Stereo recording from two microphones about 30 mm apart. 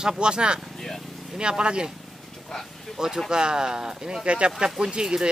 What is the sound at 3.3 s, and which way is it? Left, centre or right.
Speech, right.